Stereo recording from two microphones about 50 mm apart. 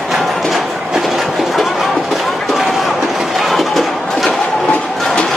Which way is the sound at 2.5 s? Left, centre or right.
Centre.